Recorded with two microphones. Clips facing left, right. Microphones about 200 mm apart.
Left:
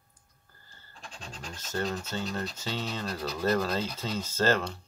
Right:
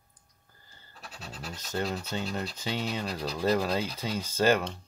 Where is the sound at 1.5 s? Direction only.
15° right (ahead or behind).